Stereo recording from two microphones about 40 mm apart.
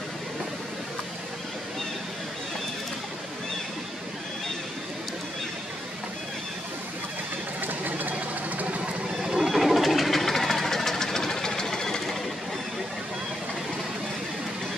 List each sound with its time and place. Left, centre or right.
7.6 s vehicle: right
9.2 s a sound: centre
9.5 s engine: centre